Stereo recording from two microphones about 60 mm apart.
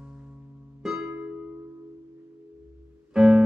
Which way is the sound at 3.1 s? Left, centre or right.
Centre.